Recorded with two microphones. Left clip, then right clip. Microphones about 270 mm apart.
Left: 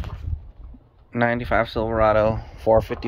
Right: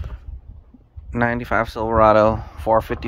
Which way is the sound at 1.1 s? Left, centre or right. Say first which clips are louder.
Right 1 dB; centre.